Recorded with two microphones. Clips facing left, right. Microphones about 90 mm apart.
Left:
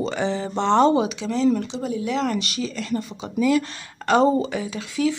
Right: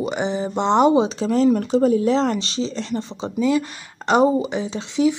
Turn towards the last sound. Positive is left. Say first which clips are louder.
# right 4 dB
turn(degrees=-25)  # may be behind; listen again after turning